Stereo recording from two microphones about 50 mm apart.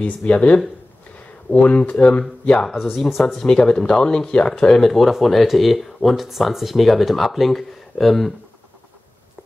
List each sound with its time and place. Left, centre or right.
0.0 s speech: left
2.6 s speech: centre